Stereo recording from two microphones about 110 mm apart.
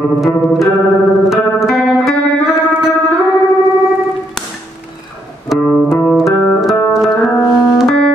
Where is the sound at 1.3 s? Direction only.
Centre (ahead or behind).